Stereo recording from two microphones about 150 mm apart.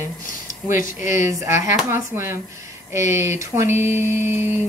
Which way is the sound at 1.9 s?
15° right (ahead or behind).